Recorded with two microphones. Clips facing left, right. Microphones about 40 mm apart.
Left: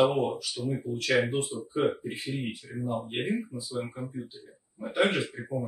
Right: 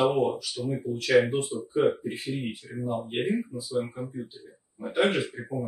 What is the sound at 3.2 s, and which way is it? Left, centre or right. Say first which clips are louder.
Speech: right 4 dB; right.